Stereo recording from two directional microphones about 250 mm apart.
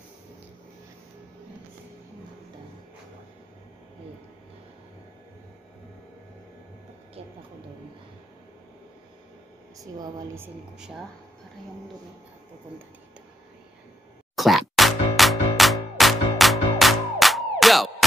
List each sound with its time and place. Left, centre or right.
9.9 s speech: centre
14.3 s music: centre